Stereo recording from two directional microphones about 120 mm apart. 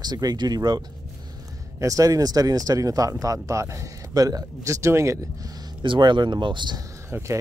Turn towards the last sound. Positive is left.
turn(degrees=-25)  # may be behind; listen again after turning